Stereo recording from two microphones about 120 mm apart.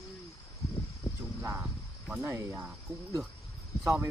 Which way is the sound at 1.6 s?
5° right (ahead or behind).